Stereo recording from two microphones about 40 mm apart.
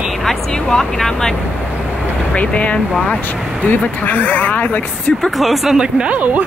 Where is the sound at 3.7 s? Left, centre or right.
Left.